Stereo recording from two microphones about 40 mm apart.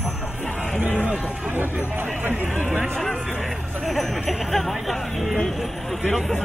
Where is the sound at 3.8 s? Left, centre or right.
Centre.